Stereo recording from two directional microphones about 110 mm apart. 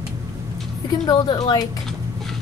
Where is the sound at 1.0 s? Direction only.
40° left (ahead or behind).